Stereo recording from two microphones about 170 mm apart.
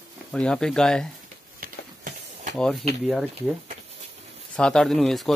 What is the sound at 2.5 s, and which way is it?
Speech, 5° left (ahead or behind).